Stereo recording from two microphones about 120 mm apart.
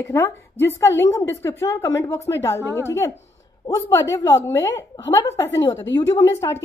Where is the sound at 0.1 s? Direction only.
25° left (ahead or behind).